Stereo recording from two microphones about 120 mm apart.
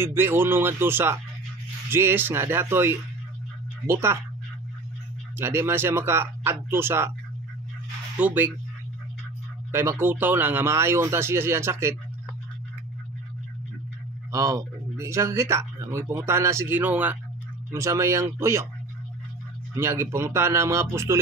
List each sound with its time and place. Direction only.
0.0 s speech: 20° right (ahead or behind)
5.4 s speech: 20° right (ahead or behind)
8.2 s speech: 10° right (ahead or behind)
9.7 s speech: 20° right (ahead or behind)
14.3 s speech: 25° right (ahead or behind)
17.6 s speech: 25° right (ahead or behind)
19.7 s speech: 25° right (ahead or behind)